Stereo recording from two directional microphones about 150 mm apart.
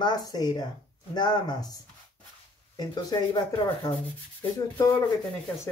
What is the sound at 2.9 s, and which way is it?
Speech, 25° left (ahead or behind).